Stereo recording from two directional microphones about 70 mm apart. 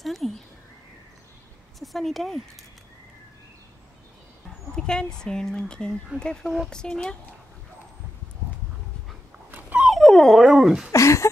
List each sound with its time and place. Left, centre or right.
0.0 s a sound: centre
1.8 s speech: centre
4.7 s speech: centre
9.5 s dog: right
9.8 s dog: centre
10.4 s speech: centre
10.9 s speech: left